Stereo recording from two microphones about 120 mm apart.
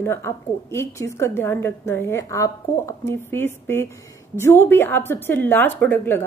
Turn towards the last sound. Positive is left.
turn(degrees=15)  # may be behind; listen again after turning